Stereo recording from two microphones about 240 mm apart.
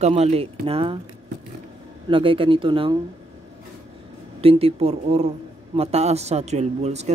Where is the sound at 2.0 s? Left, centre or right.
Right.